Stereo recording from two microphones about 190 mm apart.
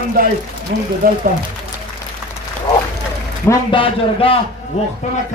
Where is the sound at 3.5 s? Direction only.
25° left (ahead or behind).